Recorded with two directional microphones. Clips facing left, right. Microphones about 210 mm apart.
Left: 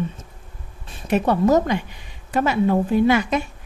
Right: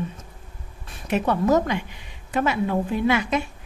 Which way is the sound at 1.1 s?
35° left (ahead or behind).